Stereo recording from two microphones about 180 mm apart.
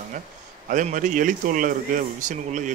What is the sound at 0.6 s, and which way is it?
A man's voice, 45° right (ahead or behind).